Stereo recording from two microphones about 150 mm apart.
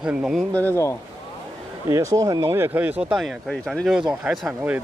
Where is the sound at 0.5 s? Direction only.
10° left (ahead or behind).